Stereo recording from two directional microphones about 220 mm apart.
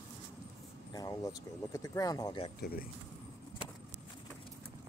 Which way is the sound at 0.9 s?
15° left (ahead or behind).